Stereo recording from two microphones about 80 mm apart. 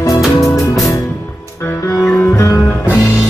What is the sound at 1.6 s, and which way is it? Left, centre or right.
Music, left.